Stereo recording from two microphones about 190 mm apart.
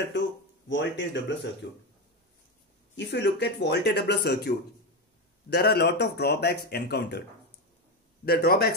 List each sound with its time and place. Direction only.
0.2 s a sound: 70° left (ahead or behind)
0.7 s speech: 70° left (ahead or behind)
3.0 s speech: 65° left (ahead or behind)
8.3 s speech: 55° left (ahead or behind)